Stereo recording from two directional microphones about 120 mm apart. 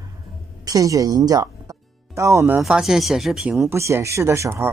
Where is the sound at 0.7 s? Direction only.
30° right (ahead or behind).